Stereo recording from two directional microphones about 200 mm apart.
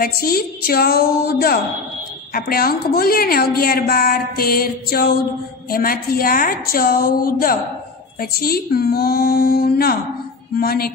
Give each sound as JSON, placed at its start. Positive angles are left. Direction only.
{"t": 0.0, "sound": "a woman's voice", "side_deg": 45}